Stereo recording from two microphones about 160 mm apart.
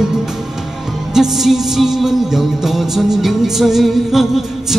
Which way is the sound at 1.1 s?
5° right (ahead or behind).